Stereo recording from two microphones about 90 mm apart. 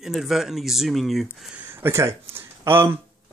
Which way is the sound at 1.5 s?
25° right (ahead or behind).